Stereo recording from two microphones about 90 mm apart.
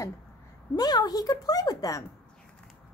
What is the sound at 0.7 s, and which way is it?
Speech, 50° left (ahead or behind).